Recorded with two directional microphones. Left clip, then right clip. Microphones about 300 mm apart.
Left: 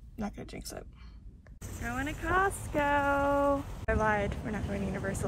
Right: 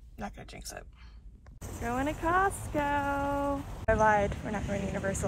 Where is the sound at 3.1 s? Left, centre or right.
Right.